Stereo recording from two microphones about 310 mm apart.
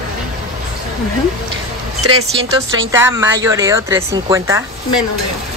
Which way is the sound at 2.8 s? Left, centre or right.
Centre.